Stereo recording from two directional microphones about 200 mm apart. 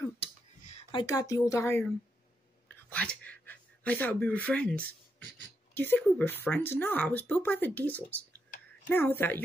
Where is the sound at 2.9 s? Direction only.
5° left (ahead or behind).